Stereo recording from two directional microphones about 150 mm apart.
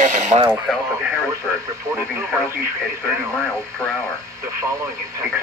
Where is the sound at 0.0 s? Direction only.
55° right (ahead or behind).